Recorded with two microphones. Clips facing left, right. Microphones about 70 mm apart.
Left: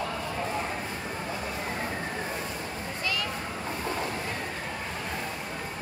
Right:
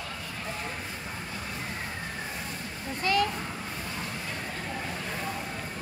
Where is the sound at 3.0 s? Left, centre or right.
Right.